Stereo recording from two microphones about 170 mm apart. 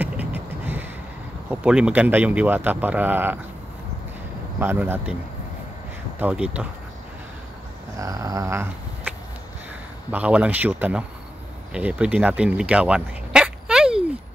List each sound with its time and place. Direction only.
0.0 s vehicle: 10° right (ahead or behind)
1.5 s speech: 5° right (ahead or behind)
4.6 s speech: 10° right (ahead or behind)
6.1 s speech: 5° right (ahead or behind)
8.0 s a sound: 20° right (ahead or behind)
10.1 s speech: 10° right (ahead or behind)